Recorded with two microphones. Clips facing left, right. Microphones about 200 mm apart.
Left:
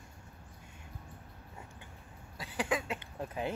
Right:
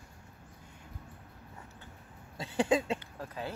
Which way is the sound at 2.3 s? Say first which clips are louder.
Right 6 dB; 25° right (ahead or behind).